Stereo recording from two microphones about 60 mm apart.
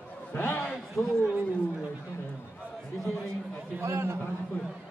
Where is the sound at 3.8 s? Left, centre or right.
Right.